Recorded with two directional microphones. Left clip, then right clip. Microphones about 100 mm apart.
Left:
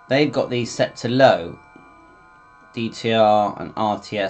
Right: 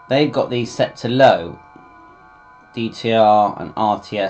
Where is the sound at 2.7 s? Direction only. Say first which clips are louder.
Right 3 dB; 30° left (ahead or behind).